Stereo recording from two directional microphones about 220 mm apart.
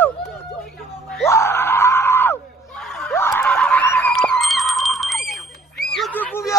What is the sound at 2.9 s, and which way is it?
Snicker, centre (ahead or behind).